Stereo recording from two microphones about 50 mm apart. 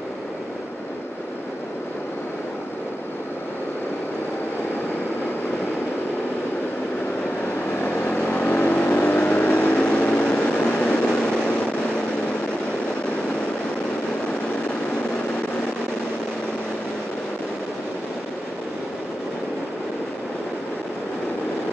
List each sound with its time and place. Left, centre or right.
7.8 s vehicle: left
10.1 s vehicle: centre